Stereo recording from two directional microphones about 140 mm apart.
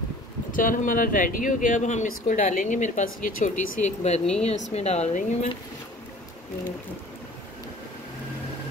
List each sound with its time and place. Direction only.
0.5 s speech: 70° left (ahead or behind); by 5.6 s 55° left (ahead or behind)